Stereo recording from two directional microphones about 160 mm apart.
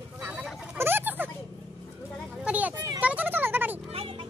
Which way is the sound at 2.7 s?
25° right (ahead or behind).